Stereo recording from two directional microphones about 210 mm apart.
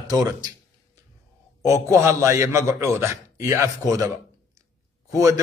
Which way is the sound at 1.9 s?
15° right (ahead or behind).